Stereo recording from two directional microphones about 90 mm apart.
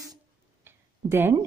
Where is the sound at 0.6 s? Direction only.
25° right (ahead or behind).